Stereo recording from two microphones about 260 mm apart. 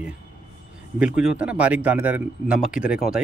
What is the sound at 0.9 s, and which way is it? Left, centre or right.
Speech, centre.